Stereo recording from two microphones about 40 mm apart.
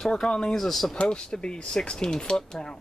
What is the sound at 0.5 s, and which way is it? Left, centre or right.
Speech, centre.